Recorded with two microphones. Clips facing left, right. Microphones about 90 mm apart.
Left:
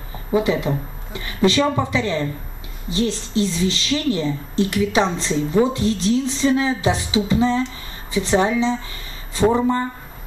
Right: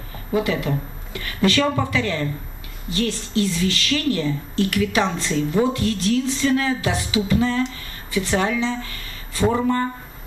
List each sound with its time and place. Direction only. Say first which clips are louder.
0.3 s speech: left 3 dB; 20° left (ahead or behind)